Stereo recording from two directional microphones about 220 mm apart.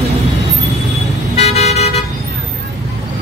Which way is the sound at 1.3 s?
30° left (ahead or behind).